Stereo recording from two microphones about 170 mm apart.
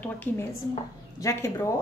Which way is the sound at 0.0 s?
10° left (ahead or behind).